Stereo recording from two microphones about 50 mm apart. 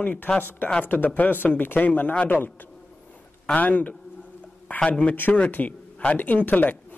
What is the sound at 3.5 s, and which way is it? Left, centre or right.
A woman's voice, left.